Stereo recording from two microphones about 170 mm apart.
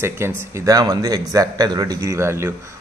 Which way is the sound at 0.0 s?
15° right (ahead or behind).